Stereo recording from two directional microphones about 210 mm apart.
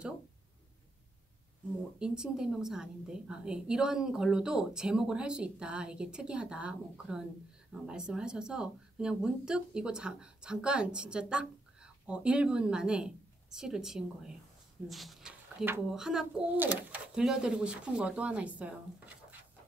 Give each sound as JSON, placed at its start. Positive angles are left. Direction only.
{"t": 2.0, "sound": "speech", "side_deg": -5}